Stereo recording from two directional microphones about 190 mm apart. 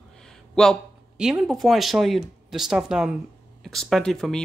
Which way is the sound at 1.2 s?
Centre (ahead or behind).